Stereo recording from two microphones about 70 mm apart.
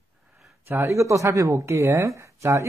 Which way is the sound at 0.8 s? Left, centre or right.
Right.